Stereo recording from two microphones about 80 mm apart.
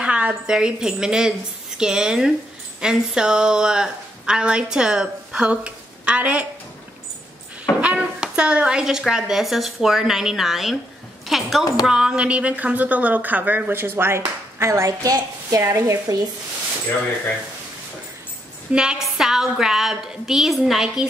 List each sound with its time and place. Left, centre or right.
0.0 s a woman's voice: centre
7.8 s a woman's voice: centre; by 16.2 s right
18.7 s a woman's voice: centre